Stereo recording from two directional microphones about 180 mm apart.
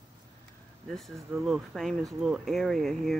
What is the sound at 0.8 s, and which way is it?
A man's voice, centre (ahead or behind).